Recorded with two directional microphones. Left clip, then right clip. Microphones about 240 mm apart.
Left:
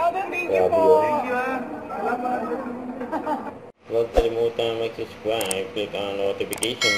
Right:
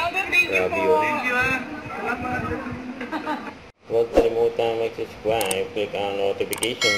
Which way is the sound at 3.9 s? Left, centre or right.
Centre.